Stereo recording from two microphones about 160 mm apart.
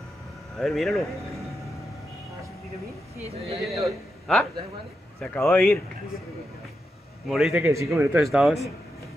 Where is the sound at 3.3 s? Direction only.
40° right (ahead or behind).